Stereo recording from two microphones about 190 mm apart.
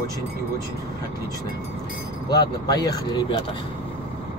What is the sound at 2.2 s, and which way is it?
Speech, 20° left (ahead or behind).